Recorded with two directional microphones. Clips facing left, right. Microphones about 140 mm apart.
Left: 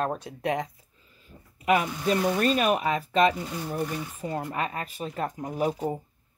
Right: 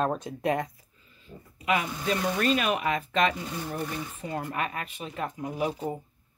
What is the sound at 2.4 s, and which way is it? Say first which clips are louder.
Speech: left 2 dB; 40° left (ahead or behind).